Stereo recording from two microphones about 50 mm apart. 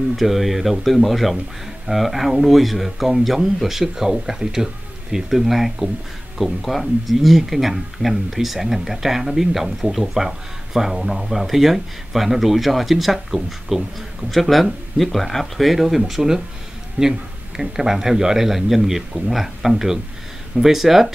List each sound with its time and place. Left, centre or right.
0.1 s speech: centre
17.0 s speech: right
17.6 s speech: centre